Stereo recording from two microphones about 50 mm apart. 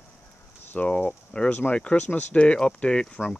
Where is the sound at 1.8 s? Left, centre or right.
Left.